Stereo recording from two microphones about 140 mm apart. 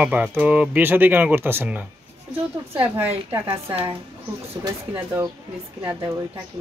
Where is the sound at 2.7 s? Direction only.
45° right (ahead or behind).